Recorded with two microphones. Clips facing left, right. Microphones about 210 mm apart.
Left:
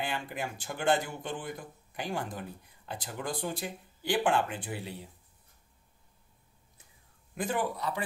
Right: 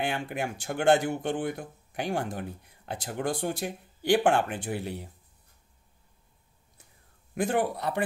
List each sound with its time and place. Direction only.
0.0 s speech: 65° right (ahead or behind)
7.3 s speech: 65° right (ahead or behind)